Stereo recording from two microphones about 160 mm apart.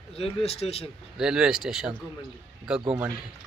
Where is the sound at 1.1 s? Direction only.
5° right (ahead or behind).